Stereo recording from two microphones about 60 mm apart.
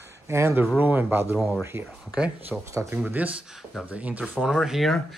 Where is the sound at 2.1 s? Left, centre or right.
Right.